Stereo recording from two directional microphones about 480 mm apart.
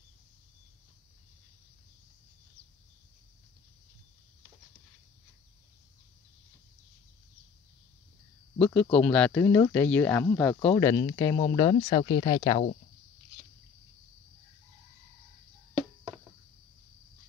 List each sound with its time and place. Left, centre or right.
8.5 s speech: centre